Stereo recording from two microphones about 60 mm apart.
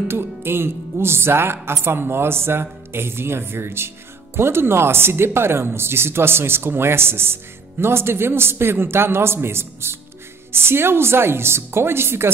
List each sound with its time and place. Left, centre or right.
0.1 s a man's voice: right